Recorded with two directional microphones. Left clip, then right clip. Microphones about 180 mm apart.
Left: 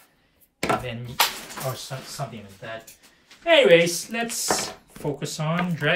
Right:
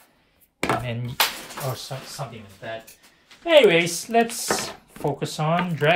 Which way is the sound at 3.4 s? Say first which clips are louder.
Even; 30° right (ahead or behind).